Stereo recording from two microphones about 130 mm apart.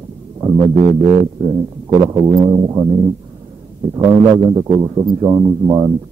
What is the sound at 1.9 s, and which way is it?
A man's voice, 35° right (ahead or behind).